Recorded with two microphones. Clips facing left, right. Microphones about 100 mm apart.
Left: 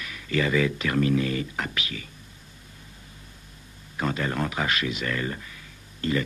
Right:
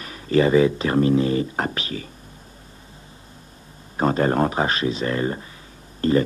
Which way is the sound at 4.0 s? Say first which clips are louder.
Right 8 dB; 40° right (ahead or behind).